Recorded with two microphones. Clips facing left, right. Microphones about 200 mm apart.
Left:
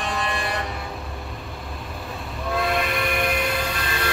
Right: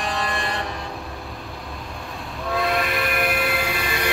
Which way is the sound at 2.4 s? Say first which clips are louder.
Right 1 dB; centre (ahead or behind).